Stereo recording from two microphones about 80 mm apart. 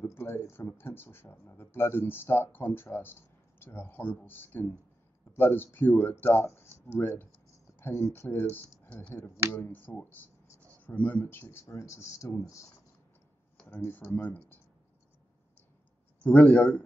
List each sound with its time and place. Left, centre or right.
0.0 s speech: left
13.7 s speech: left
16.3 s speech: centre